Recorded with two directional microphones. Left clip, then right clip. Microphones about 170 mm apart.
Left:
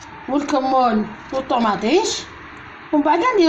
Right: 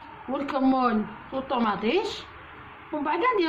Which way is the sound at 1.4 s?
35° left (ahead or behind).